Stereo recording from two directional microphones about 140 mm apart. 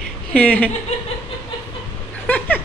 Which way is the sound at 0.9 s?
50° left (ahead or behind).